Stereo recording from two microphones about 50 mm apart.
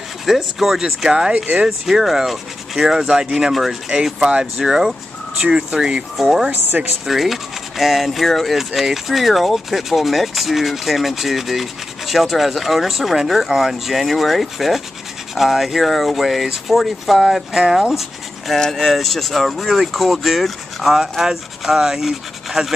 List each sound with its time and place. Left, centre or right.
0.2 s speech: centre
1.3 s speech: right
1.9 s speech: centre
6.8 s speech: right
7.1 s speech: centre
18.6 s speech: centre